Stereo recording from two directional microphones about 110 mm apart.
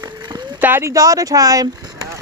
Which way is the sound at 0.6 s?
25° right (ahead or behind).